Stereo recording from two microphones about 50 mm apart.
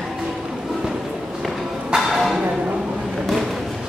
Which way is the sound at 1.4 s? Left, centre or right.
Centre.